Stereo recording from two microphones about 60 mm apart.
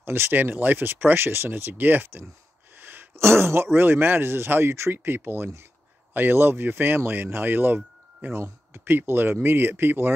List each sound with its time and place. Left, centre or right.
0.0 s speech: right
2.8 s a sound: right
3.7 s speech: right